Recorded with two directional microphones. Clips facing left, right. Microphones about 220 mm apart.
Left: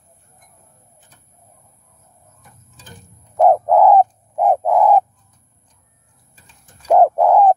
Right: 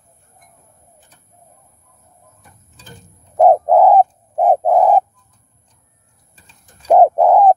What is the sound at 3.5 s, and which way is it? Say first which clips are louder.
Bird: right 1 dB; 30° right (ahead or behind).